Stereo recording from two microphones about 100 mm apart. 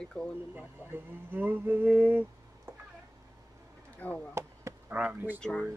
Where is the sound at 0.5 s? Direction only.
20° right (ahead or behind).